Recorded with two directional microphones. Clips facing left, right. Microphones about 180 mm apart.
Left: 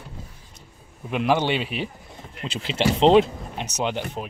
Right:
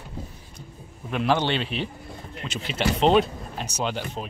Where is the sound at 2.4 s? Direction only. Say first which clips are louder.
Left 3 dB; 30° left (ahead or behind).